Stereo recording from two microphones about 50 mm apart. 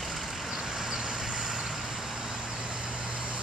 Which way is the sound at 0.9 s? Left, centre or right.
Centre.